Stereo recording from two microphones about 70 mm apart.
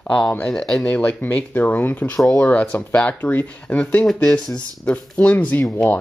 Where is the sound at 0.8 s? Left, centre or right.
Left.